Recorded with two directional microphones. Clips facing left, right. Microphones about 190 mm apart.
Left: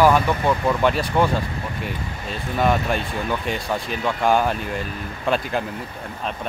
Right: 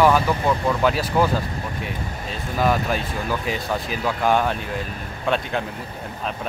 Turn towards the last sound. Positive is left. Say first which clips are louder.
# left 1 dB
turn(degrees=0)  # may be behind; listen again after turning